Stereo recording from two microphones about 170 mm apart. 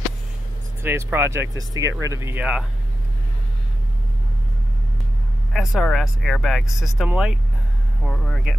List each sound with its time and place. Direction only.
0.8 s speech: 15° right (ahead or behind)
5.5 s speech: centre (ahead or behind)
8.0 s speech: 5° left (ahead or behind)